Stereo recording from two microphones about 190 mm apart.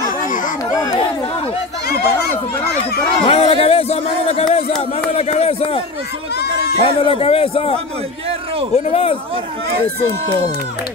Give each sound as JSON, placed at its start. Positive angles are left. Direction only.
{"t": 3.3, "sound": "a sound", "side_deg": 30}
{"t": 5.1, "sound": "speech", "side_deg": 30}
{"t": 6.8, "sound": "speech", "side_deg": 30}
{"t": 8.7, "sound": "speech", "side_deg": 30}